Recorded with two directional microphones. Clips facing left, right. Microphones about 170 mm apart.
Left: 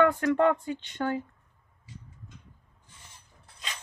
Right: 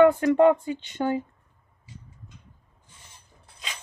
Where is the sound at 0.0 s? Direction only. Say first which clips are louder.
Right 6 dB; 20° right (ahead or behind).